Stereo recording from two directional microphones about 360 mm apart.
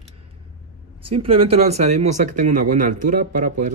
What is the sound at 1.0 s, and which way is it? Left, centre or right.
Speech, centre.